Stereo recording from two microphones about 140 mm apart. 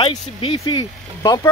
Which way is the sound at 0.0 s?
40° left (ahead or behind).